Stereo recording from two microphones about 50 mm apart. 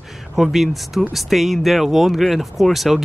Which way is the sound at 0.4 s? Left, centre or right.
Centre.